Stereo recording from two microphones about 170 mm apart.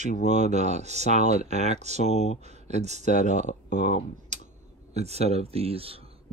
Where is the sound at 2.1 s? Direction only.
40° left (ahead or behind).